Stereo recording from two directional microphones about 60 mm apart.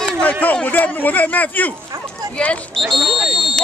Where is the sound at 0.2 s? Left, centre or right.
Left.